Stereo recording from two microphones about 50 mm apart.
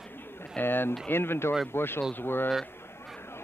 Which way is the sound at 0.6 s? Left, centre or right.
Left.